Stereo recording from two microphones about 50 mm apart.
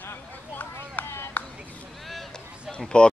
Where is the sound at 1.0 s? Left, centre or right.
Left.